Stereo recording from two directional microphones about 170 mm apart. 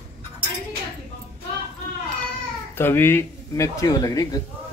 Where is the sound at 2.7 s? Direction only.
15° left (ahead or behind).